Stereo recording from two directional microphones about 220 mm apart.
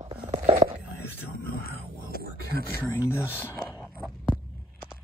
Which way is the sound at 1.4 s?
40° left (ahead or behind).